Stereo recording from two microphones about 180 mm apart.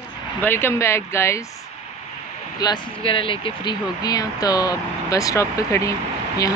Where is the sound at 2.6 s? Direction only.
25° left (ahead or behind).